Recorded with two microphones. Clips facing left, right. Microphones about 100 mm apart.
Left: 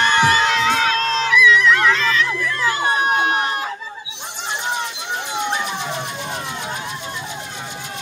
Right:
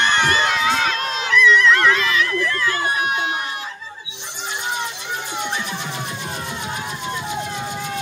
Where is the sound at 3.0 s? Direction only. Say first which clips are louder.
Left 4 dB; 45° left (ahead or behind).